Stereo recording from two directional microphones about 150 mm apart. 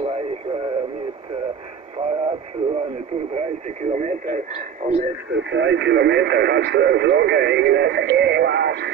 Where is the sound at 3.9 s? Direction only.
55° right (ahead or behind).